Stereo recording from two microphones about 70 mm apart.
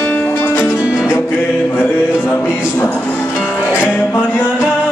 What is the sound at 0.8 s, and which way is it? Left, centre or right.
Music, centre.